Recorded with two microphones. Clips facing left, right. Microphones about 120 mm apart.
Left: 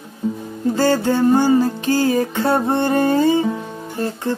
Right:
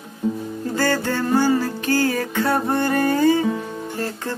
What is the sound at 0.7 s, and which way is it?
Music, 20° left (ahead or behind).